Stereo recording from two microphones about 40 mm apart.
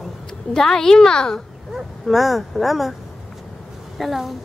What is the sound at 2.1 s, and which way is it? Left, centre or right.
Speech, centre.